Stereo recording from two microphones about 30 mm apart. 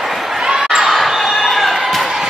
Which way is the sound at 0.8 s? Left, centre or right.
Centre.